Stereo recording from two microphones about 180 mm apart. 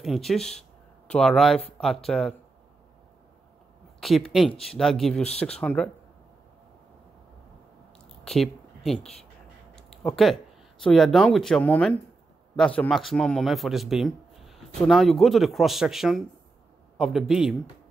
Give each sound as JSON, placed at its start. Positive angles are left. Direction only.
{"t": 0.0, "sound": "a man's voice", "side_deg": 0}
{"t": 4.0, "sound": "a man's voice", "side_deg": 0}
{"t": 8.2, "sound": "a man's voice", "side_deg": 0}